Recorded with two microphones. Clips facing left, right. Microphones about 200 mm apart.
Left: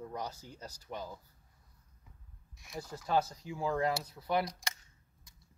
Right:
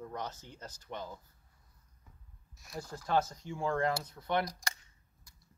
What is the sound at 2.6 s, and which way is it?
Speech, centre (ahead or behind).